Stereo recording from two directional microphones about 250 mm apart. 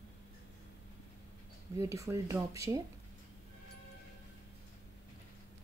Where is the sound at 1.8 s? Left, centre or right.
Centre.